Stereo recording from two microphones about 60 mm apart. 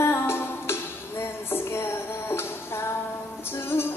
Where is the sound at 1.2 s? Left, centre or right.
Left.